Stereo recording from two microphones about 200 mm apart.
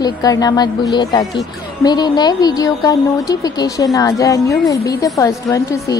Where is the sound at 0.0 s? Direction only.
20° left (ahead or behind).